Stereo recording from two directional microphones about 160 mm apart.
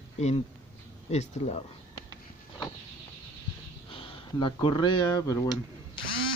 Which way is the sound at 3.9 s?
30° left (ahead or behind).